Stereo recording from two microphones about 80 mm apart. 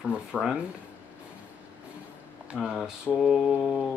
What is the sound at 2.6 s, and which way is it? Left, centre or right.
Speech, centre.